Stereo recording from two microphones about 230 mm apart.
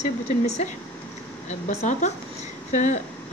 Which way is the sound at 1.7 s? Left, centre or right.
Left.